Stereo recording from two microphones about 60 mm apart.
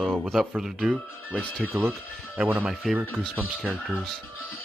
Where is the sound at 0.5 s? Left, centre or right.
Centre.